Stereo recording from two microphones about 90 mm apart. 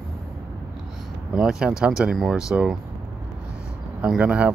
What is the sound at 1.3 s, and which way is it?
Speech, 5° right (ahead or behind).